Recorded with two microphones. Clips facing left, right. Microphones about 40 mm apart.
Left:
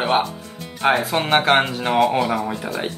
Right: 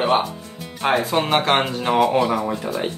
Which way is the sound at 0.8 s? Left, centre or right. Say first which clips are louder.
Left 1 dB; centre.